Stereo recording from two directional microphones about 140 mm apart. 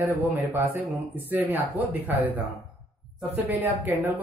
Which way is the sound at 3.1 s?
15° right (ahead or behind).